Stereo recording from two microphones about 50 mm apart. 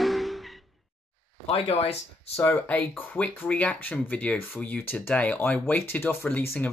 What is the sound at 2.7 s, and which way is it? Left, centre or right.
Speech, left.